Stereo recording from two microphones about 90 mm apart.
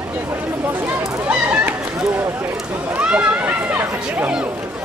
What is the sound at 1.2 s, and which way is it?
Speech, 20° right (ahead or behind).